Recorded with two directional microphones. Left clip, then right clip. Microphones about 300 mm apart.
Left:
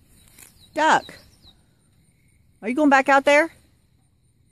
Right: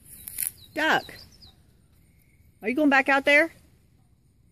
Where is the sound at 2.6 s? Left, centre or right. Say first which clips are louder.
Left 4 dB; centre.